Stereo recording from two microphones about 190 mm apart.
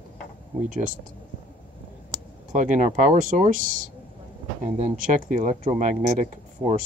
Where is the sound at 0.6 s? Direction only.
45° right (ahead or behind).